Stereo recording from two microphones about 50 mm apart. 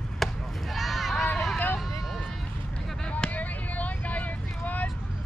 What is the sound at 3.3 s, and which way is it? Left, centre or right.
Vehicle, left.